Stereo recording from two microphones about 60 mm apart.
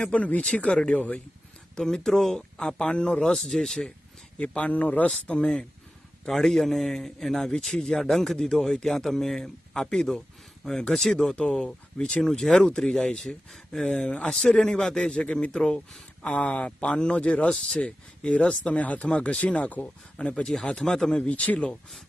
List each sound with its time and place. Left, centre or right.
0.0 s speech: left
2.0 s speech: centre
4.4 s speech: left
6.2 s a man's voice: centre; by 20.4 s left
20.4 s speech: centre